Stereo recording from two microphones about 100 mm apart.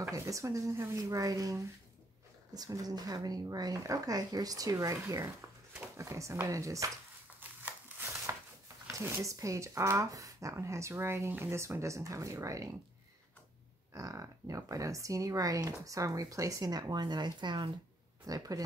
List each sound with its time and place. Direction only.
0.1 s speech: 35° right (ahead or behind)
5.9 s speech: 30° right (ahead or behind)
7.3 s a sound: 20° right (ahead or behind)
8.8 s speech: 25° right (ahead or behind)
13.9 s speech: 35° right (ahead or behind); by 17.6 s 50° right (ahead or behind)
18.2 s speech: 40° right (ahead or behind)